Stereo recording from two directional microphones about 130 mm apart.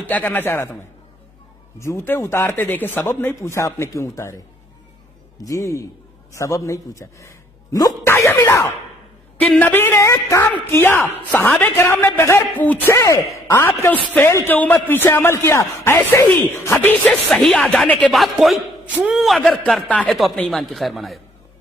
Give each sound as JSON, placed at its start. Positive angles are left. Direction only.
{"t": 0.1, "sound": "a woman's voice", "side_deg": 15}
{"t": 1.8, "sound": "speech", "side_deg": 20}
{"t": 5.4, "sound": "a man's voice", "side_deg": 25}
{"t": 9.4, "sound": "a woman's voice", "side_deg": 10}
{"t": 12.9, "sound": "speech", "side_deg": 25}
{"t": 17.1, "sound": "a woman's voice", "side_deg": 0}